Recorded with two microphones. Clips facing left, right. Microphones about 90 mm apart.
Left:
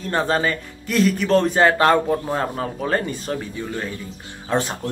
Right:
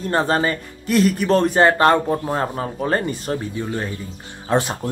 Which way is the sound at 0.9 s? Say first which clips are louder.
Right 1 dB; 10° right (ahead or behind).